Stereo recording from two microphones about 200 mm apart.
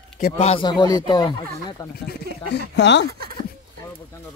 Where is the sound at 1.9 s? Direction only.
55° left (ahead or behind).